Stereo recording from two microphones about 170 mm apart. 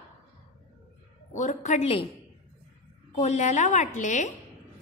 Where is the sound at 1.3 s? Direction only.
45° left (ahead or behind).